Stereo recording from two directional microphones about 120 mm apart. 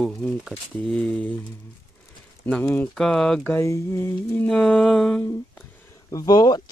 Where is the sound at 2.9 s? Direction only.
5° left (ahead or behind).